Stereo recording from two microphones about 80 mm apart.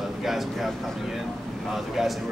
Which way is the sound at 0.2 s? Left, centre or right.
Centre.